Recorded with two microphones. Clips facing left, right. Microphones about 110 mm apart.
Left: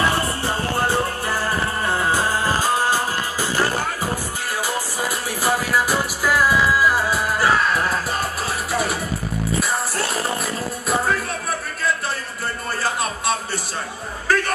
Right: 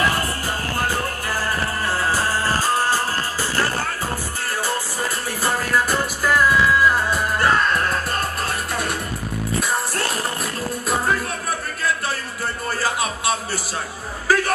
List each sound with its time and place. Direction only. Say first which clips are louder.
0.7 s music: left 3 dB; 25° left (ahead or behind)
4.6 s music: left 1 dB; 10° left (ahead or behind)
9.6 s music: right 2 dB; centre (ahead or behind)
12.8 s a sound: even; centre (ahead or behind)